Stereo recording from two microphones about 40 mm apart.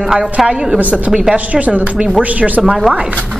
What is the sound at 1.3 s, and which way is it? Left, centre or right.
A woman's voice, right.